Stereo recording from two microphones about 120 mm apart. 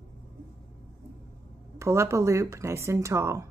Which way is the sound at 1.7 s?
25° right (ahead or behind).